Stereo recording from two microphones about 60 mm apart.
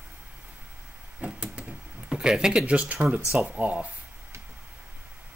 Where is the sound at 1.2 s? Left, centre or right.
Centre.